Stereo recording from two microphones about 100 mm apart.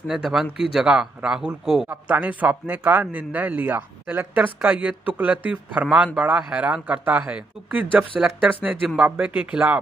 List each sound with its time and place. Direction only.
0.1 s speech: 5° right (ahead or behind)
1.9 s speech: 15° right (ahead or behind)